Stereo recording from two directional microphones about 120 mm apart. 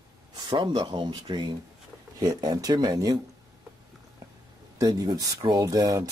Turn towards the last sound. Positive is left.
turn(degrees=-30)  # may be behind; listen again after turning